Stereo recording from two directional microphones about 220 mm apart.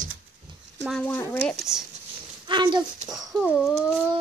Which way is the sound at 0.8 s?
10° left (ahead or behind).